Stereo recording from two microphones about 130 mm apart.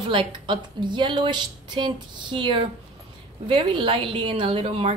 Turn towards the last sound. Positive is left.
turn(degrees=-45)  # may be behind; listen again after turning